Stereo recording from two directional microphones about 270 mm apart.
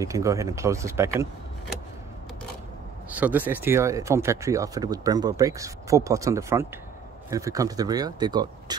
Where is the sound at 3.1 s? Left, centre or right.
Centre.